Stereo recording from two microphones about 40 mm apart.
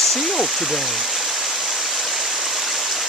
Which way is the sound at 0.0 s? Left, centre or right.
Centre.